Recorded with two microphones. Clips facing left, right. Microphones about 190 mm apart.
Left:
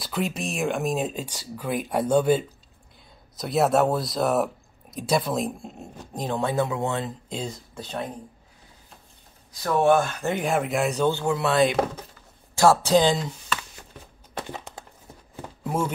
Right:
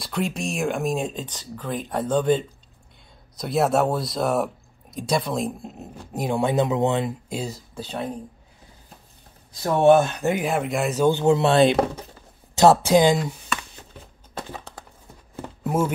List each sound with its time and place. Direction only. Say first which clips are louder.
0.0 s speech: right 1 dB; centre (ahead or behind)
9.5 s speech: right 4 dB; 25° right (ahead or behind)
10.3 s speech: left 2 dB; centre (ahead or behind)
11.1 s speech: right 5 dB; 20° right (ahead or behind)
12.5 s speech: right 3 dB; 15° right (ahead or behind)
14.3 s a sound: even; 20° left (ahead or behind)
15.6 s a sound: right 4 dB; 5° right (ahead or behind)